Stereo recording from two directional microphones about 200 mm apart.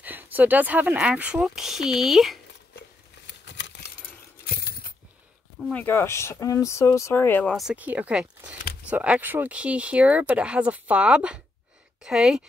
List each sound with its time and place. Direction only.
0.0 s speech: 10° right (ahead or behind)
3.4 s keys jangling: 60° left (ahead or behind)
4.5 s a sound: 50° left (ahead or behind)
5.6 s speech: 5° left (ahead or behind)